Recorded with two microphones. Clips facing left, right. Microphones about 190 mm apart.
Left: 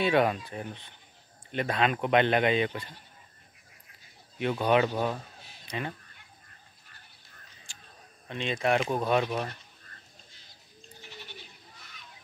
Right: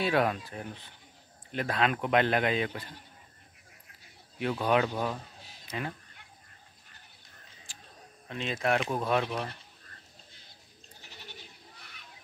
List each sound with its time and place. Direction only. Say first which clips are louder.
0.0 s speech: left 3 dB; centre (ahead or behind)
4.6 s speech: left 3 dB; 5° left (ahead or behind)
8.3 s speech: left 2 dB; centre (ahead or behind)
11.0 s goat: left 5 dB; 40° right (ahead or behind)